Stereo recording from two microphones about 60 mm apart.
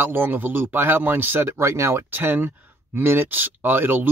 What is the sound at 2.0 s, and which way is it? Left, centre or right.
Speech, right.